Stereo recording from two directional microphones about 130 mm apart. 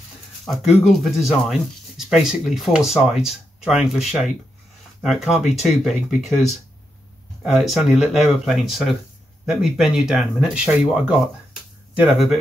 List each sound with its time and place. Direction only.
0.5 s speech: centre (ahead or behind)